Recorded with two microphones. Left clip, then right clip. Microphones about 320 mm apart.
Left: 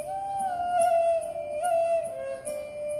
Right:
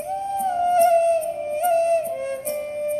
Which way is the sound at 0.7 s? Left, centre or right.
Right.